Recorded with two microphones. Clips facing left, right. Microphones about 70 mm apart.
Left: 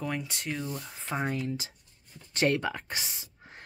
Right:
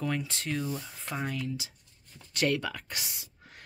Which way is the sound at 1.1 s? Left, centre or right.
Left.